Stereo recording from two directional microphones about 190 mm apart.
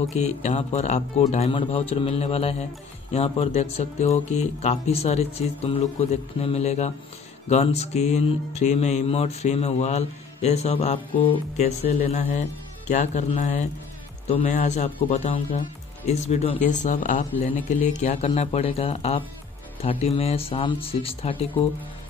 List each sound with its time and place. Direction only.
0.1 s music: 35° left (ahead or behind)
19.8 s speech: 35° left (ahead or behind)